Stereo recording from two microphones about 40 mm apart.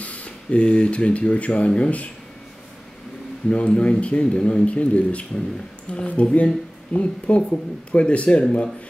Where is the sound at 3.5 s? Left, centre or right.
Left.